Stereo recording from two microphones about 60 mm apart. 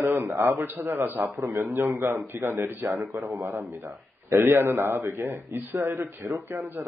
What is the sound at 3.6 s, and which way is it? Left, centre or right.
A man's voice, right.